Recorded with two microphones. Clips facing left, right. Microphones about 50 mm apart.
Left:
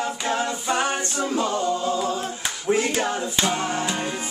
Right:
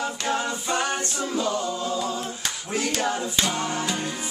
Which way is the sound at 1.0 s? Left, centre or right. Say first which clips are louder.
Left 2 dB; left.